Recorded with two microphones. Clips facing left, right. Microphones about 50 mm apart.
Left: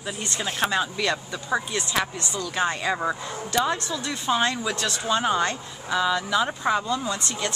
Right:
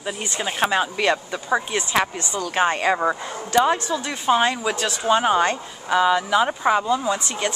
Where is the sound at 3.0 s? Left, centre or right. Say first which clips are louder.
Right 4 dB; centre.